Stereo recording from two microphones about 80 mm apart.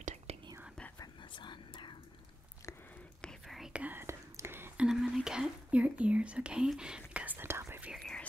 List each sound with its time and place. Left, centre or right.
1.4 s whispering: left
3.4 s whispering: centre
3.7 s whispering: centre
4.0 s whispering: right
4.7 s speech: centre
7.4 s whispering: right
8.0 s whispering: centre